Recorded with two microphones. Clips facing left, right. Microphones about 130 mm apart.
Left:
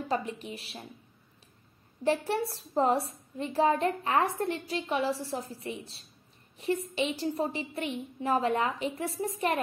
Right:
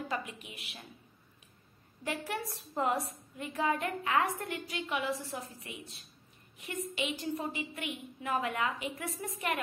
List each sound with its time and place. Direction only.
0.1 s a woman's voice: 35° left (ahead or behind)
2.0 s a woman's voice: 30° left (ahead or behind)